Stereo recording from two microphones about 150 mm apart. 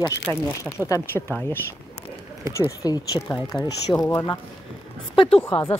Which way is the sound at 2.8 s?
25° left (ahead or behind).